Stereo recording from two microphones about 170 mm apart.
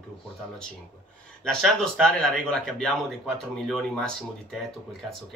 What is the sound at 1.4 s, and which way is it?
Speech, centre (ahead or behind).